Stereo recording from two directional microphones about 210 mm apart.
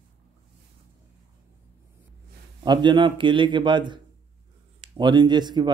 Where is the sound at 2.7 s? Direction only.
20° right (ahead or behind).